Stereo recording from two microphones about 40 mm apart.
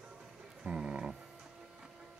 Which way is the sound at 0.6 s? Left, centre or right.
Right.